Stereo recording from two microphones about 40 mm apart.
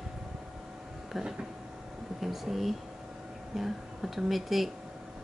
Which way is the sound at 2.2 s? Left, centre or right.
Centre.